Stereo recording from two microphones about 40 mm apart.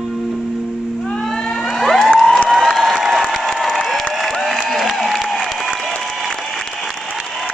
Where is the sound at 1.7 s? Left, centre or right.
Centre.